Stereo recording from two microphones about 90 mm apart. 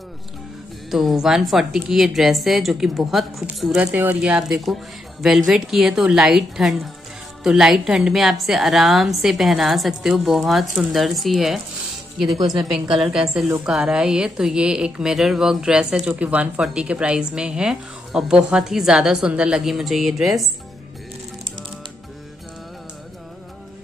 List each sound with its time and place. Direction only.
0.8 s a woman's voice: centre (ahead or behind)
3.9 s speech: 25° right (ahead or behind)
4.2 s a woman's voice: 10° right (ahead or behind)
13.0 s a woman's voice: 5° right (ahead or behind)